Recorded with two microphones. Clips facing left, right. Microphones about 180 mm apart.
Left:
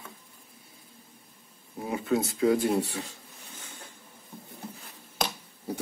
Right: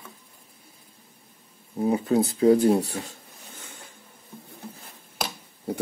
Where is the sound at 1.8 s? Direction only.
35° right (ahead or behind).